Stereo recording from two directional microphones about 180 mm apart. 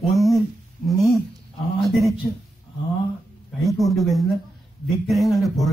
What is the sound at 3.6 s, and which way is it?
Speech, centre (ahead or behind).